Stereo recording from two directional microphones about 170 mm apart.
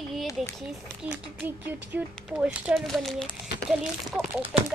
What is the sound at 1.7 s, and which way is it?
Speech, 10° right (ahead or behind).